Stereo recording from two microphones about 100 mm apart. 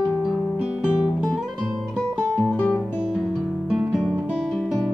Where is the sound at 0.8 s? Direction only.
10° right (ahead or behind).